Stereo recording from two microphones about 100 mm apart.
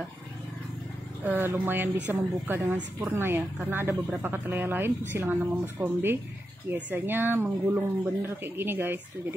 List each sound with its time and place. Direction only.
1.2 s a woman's voice: 20° right (ahead or behind)